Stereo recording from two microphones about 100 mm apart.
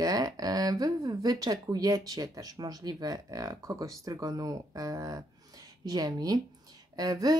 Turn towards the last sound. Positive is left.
turn(degrees=-40)  # may be behind; listen again after turning